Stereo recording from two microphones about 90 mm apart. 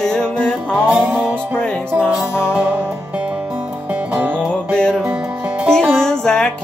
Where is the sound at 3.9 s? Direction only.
20° right (ahead or behind).